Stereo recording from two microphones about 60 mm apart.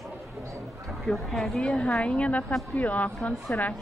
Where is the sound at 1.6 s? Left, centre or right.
Centre.